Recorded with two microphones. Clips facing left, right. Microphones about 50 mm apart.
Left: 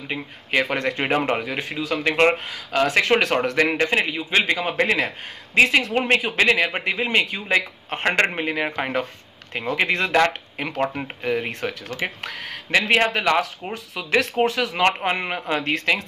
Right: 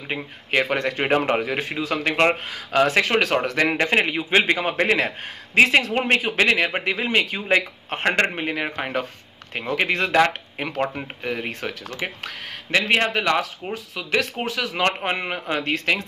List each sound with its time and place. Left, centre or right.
0.1 s a man's voice: centre
1.6 s speech: right
2.0 s a man's voice: centre
4.0 s a man's voice: right; by 7.2 s centre
7.3 s a man's voice: centre
8.0 s speech: centre